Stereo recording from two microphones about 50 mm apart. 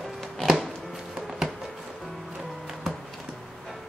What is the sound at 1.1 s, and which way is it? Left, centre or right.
Music, centre.